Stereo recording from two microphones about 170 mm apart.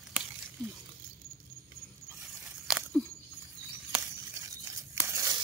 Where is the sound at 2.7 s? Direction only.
5° right (ahead or behind).